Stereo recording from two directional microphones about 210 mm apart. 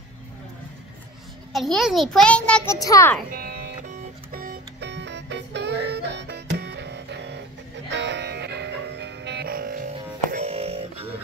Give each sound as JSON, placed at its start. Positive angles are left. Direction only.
{"t": 1.5, "sound": "a child's voice", "side_deg": 0}
{"t": 3.3, "sound": "music", "side_deg": -45}
{"t": 10.3, "sound": "music", "side_deg": -30}